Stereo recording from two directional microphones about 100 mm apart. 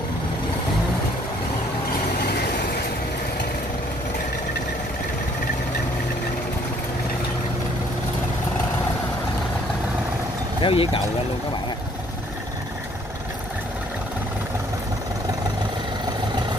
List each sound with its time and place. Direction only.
10.6 s speech: 65° left (ahead or behind)